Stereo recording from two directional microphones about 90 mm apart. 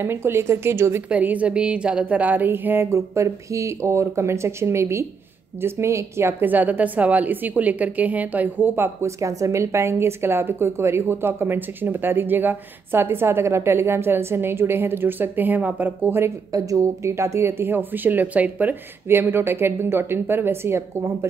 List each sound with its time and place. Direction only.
0.0 s a woman's voice: 25° right (ahead or behind)
1.0 s a woman's voice: 15° right (ahead or behind)
16.5 s a woman's voice: 40° right (ahead or behind)